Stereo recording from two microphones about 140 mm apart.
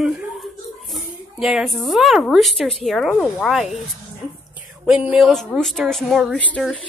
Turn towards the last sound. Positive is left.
turn(degrees=10)  # may be behind; listen again after turning